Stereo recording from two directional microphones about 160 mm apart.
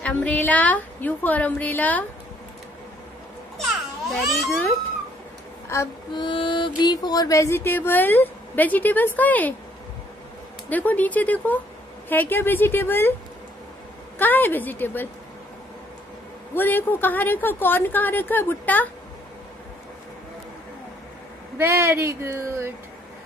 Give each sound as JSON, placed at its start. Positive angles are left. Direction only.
{"t": 0.0, "sound": "speech", "side_deg": 10}
{"t": 3.5, "sound": "children playing", "side_deg": 0}
{"t": 5.7, "sound": "speech", "side_deg": 20}
{"t": 6.2, "sound": "speech", "side_deg": 30}
{"t": 10.7, "sound": "speech", "side_deg": 10}
{"t": 14.1, "sound": "speech", "side_deg": 10}
{"t": 16.5, "sound": "speech", "side_deg": 10}
{"t": 21.5, "sound": "speech", "side_deg": -15}